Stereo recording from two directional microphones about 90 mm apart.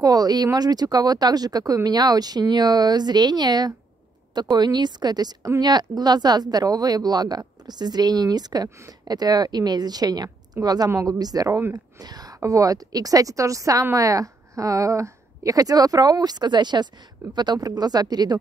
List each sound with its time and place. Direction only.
0.0 s a woman's voice: 45° right (ahead or behind)
12.0 s a sound: 45° right (ahead or behind)
12.4 s a woman's voice: 40° right (ahead or behind)